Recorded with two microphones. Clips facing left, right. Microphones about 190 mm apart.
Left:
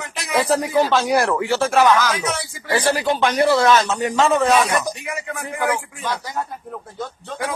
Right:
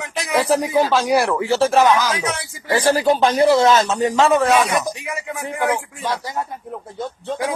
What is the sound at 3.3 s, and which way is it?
Speech, 20° right (ahead or behind).